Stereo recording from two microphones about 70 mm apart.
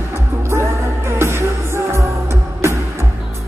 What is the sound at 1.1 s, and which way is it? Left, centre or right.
Music, right.